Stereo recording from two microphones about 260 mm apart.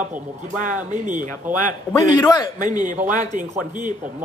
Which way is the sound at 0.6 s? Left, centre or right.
Right.